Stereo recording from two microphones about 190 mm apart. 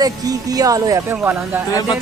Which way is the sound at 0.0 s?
20° right (ahead or behind).